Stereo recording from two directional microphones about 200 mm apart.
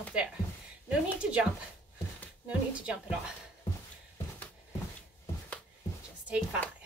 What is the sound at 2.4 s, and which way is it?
Speech, 5° right (ahead or behind).